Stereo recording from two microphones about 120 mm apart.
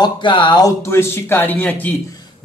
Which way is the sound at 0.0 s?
40° left (ahead or behind).